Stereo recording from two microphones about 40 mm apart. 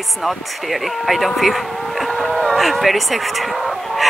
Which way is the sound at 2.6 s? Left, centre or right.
Centre.